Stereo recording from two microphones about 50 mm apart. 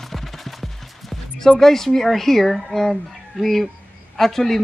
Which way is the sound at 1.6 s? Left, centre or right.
Centre.